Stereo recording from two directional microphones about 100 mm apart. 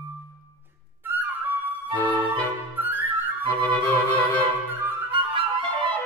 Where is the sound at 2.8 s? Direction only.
20° right (ahead or behind).